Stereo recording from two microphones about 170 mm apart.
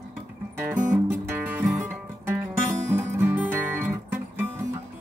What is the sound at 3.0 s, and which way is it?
Music, 15° right (ahead or behind).